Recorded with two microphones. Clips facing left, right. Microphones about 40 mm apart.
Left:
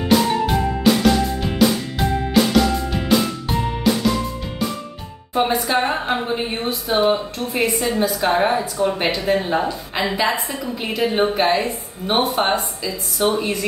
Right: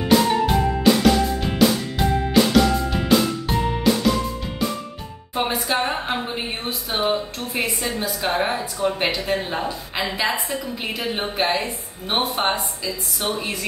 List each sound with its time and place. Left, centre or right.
0.0 s music: centre
5.3 s a woman's voice: centre